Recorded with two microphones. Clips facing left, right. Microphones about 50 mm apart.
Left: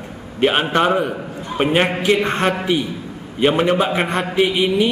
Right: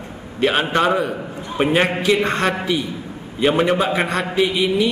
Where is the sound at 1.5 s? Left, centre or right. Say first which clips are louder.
Even; left.